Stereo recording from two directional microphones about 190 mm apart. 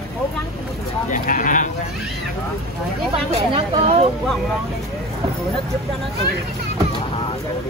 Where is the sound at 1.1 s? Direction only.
45° left (ahead or behind).